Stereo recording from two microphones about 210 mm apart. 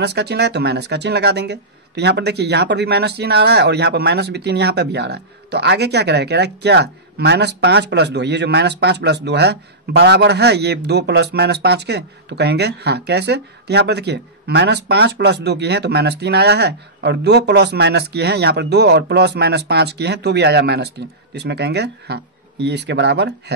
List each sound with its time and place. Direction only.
0.0 s speech: 50° right (ahead or behind)